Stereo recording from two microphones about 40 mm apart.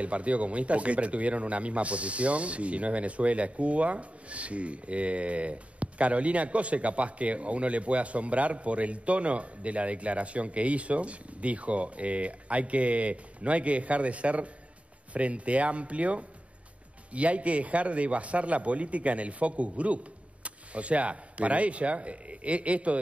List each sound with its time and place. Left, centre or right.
0.0 s speech: right